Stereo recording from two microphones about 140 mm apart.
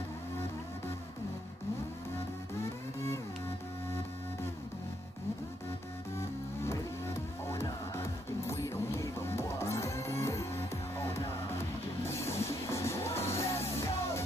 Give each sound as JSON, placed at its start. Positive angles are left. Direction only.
{"t": 6.1, "sound": "music", "side_deg": 20}